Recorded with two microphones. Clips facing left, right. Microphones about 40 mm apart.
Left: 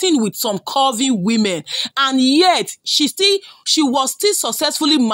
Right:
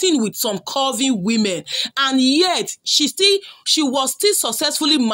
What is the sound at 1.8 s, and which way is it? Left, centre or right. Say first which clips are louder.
Speech: left 1 dB; centre.